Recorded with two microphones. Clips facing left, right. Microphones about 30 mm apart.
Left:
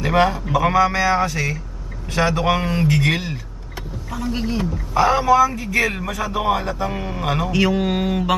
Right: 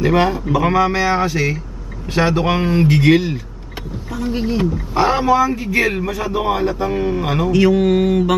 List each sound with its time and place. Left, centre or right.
0.0 s speech: centre
4.9 s speech: right
6.4 s speech: centre